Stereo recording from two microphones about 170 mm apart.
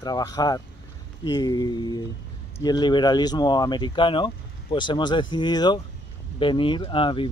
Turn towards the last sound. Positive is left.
turn(degrees=30)  # may be behind; listen again after turning